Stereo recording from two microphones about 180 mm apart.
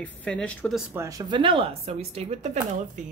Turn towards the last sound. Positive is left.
turn(degrees=-40)  # may be behind; listen again after turning